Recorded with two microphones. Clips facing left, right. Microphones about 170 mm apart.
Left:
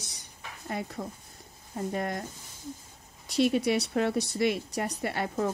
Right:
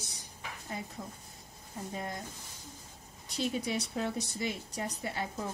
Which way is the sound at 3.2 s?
75° left (ahead or behind).